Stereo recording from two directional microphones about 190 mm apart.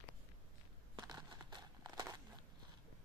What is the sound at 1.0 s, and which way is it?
Crumpling, 20° right (ahead or behind).